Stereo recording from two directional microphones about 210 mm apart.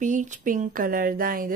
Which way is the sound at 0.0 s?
35° right (ahead or behind).